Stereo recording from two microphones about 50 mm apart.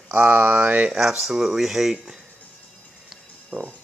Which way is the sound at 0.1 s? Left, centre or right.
Right.